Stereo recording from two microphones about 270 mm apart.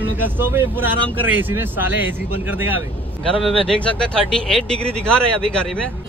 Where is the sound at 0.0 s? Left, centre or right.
Centre.